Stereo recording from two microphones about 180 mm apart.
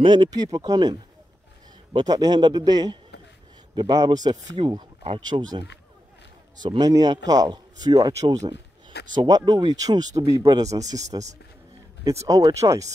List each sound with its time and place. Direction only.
0.0 s speech: 25° right (ahead or behind)
2.0 s speech: 20° right (ahead or behind)
6.6 s speech: 20° right (ahead or behind)